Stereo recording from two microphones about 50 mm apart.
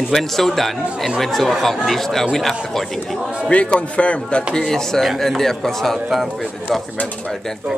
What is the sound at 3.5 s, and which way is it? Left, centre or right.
Speech, left.